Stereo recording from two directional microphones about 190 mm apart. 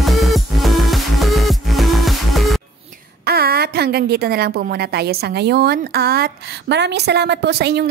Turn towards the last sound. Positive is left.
turn(degrees=-60)  # may be behind; listen again after turning